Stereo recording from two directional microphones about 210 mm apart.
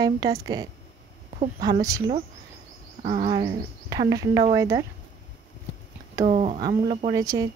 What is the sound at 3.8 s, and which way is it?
A woman's voice, 15° right (ahead or behind).